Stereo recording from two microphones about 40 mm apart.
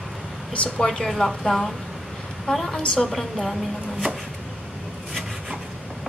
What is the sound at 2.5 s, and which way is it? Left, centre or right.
Speech, left.